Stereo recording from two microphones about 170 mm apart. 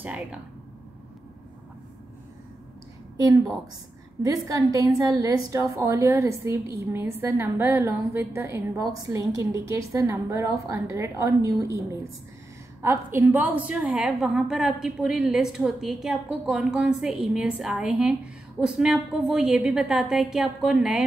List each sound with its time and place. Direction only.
0.0 s a woman's voice: 10° right (ahead or behind)
3.2 s a woman's voice: 20° right (ahead or behind); by 21.0 s 5° right (ahead or behind)